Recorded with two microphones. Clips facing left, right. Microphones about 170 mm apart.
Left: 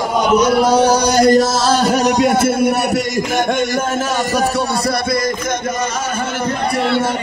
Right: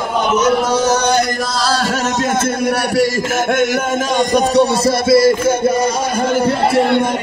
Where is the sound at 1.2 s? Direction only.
25° left (ahead or behind); by 5.2 s 5° right (ahead or behind).